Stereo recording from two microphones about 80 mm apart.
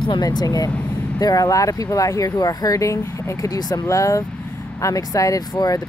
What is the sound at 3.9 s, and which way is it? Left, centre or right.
Speech, left.